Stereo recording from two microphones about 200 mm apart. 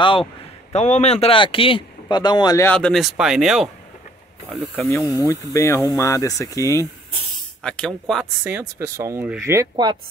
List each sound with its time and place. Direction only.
0.7 s speech: 35° left (ahead or behind); by 3.7 s centre (ahead or behind)
4.5 s speech: 10° left (ahead or behind)
7.6 s speech: 5° left (ahead or behind)
8.5 s speech: 15° right (ahead or behind)